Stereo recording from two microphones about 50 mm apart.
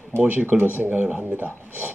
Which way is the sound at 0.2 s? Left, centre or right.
Right.